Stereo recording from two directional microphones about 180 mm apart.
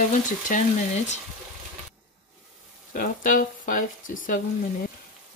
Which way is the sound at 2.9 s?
50° left (ahead or behind).